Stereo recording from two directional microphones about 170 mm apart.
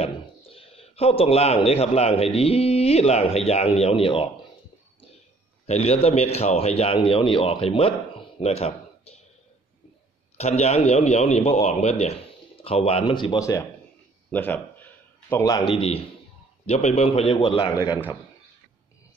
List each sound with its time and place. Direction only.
0.0 s speech: 35° left (ahead or behind)
5.7 s a man's voice: 40° left (ahead or behind)
10.3 s a man's voice: 40° left (ahead or behind); by 13.7 s 20° left (ahead or behind)
14.3 s a sound: 10° left (ahead or behind)
15.6 s a man's voice: 35° left (ahead or behind)